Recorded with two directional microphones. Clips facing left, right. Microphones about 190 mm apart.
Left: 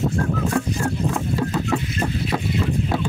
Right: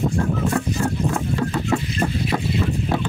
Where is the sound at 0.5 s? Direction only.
Centre (ahead or behind).